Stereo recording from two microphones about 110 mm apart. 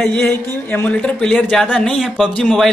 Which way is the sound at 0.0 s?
5° left (ahead or behind).